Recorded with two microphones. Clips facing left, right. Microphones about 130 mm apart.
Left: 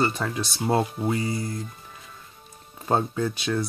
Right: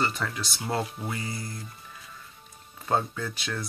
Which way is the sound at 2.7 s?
30° left (ahead or behind).